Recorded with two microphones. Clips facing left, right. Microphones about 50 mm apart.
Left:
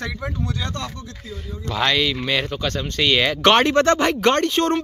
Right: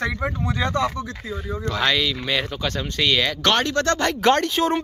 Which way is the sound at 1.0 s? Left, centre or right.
Right.